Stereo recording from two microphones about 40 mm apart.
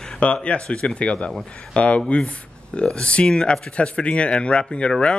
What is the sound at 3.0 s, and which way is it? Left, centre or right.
Speech, left.